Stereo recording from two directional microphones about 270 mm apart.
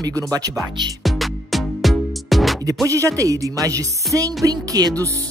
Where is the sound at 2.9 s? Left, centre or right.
Centre.